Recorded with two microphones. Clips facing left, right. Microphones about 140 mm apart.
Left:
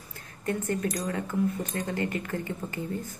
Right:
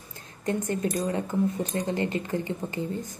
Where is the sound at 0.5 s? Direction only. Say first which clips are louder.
Right 2 dB; 20° right (ahead or behind).